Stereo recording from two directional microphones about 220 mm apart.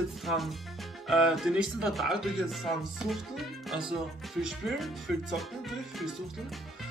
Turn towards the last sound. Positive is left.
turn(degrees=0)  # may be behind; listen again after turning